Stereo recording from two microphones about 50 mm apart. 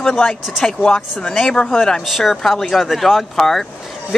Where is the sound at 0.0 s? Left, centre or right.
Centre.